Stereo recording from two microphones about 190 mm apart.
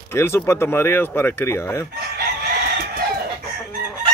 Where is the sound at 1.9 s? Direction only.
55° right (ahead or behind).